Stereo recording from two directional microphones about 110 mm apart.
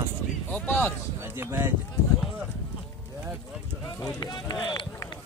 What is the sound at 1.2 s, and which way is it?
Speech, 20° right (ahead or behind).